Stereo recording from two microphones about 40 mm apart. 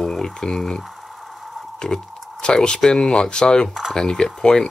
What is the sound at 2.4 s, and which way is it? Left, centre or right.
Speech, left.